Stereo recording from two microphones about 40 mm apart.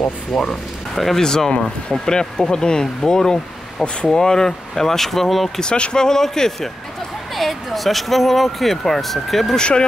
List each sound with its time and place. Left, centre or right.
0.3 s speech: centre
5.6 s speech: centre
7.3 s speech: centre
9.6 s speech: left